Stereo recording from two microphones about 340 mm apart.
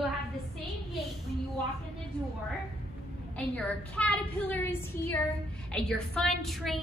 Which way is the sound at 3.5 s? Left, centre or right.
Centre.